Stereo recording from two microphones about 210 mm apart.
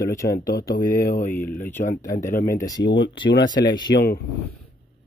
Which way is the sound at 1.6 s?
10° left (ahead or behind).